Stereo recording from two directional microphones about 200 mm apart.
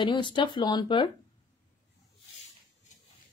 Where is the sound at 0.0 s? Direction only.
25° left (ahead or behind).